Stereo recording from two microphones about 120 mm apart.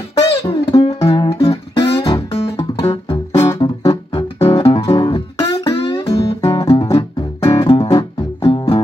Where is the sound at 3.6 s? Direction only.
40° left (ahead or behind).